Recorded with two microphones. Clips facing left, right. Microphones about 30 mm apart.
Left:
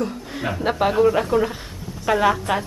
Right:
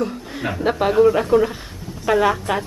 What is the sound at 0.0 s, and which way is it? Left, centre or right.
A woman's voice, centre.